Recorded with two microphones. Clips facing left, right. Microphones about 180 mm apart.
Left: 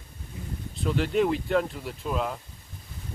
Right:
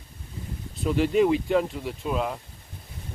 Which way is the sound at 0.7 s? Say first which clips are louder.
Right 3 dB; centre (ahead or behind).